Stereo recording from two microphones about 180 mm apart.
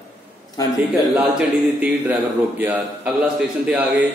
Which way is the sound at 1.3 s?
5° right (ahead or behind).